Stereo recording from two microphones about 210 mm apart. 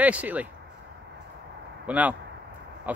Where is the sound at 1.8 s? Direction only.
5° right (ahead or behind).